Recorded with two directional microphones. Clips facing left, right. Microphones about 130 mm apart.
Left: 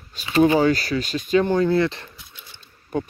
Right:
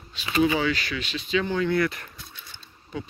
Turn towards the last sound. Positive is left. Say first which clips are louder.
# left 9 dB
turn(degrees=50)  # may be behind; listen again after turning